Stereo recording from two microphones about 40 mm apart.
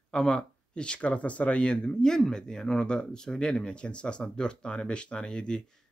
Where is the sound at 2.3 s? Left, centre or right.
Centre.